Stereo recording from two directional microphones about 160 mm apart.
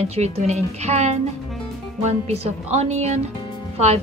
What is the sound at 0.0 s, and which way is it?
Speech, 45° right (ahead or behind).